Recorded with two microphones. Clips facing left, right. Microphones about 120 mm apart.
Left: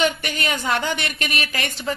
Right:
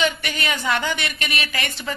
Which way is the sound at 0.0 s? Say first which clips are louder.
Left 1 dB; 50° left (ahead or behind).